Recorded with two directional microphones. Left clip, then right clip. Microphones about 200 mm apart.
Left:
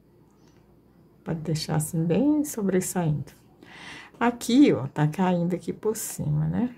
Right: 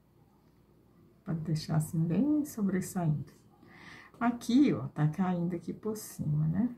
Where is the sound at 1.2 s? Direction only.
60° left (ahead or behind).